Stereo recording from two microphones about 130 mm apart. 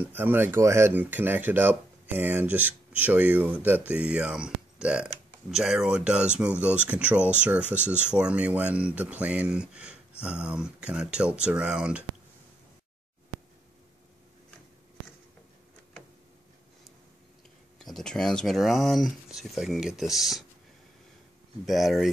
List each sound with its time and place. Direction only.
0.0 s speech: 15° right (ahead or behind)
17.7 s speech: 5° left (ahead or behind)
21.6 s speech: centre (ahead or behind)